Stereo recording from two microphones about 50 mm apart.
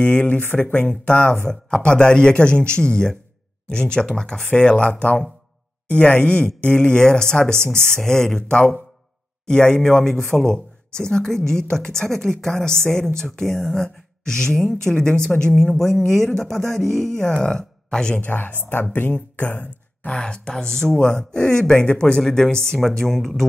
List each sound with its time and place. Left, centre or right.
0.0 s speech: left
18.2 s a woman's voice: left
20.1 s speech: centre